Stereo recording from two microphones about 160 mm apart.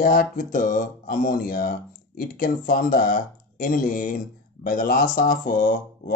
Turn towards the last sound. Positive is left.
turn(degrees=60)  # may be behind; listen again after turning